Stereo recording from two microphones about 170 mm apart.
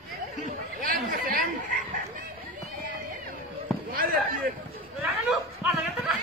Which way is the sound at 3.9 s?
55° right (ahead or behind).